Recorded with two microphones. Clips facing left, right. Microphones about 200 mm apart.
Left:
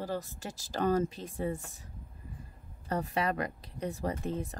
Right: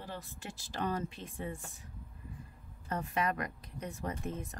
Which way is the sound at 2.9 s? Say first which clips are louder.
Left 3 dB; 35° left (ahead or behind).